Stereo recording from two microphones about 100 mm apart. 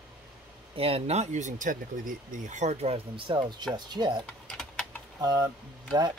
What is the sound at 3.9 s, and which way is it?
Speech, 45° right (ahead or behind).